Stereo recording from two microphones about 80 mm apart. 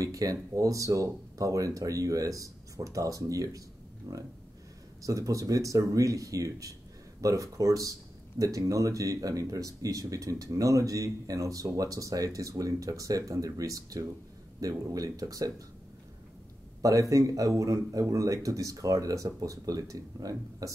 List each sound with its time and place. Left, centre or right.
0.0 s speech: right
16.8 s speech: right